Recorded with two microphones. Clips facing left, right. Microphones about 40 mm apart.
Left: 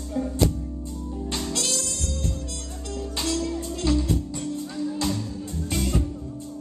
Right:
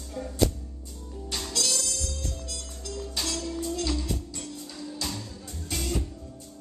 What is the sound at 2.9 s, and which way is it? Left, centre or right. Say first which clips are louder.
Music: left 5 dB; left.